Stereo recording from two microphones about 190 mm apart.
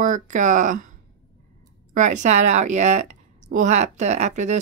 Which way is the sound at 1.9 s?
40° right (ahead or behind).